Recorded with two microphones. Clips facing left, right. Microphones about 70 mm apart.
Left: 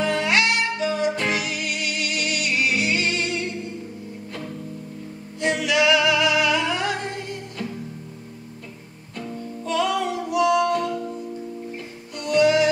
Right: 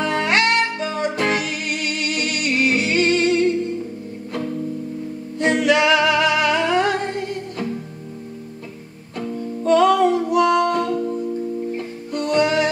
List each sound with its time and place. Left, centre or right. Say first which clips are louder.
0.0 s music: right 2 dB; right
5.4 s music: right 4 dB; right
9.7 s music: right 9 dB; right